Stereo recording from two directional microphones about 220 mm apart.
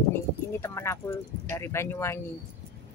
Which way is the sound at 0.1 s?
10° left (ahead or behind).